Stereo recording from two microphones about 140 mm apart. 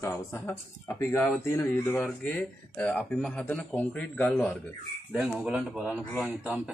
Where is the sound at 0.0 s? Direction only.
15° left (ahead or behind).